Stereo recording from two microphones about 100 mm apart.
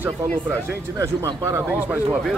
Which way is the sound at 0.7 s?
30° right (ahead or behind).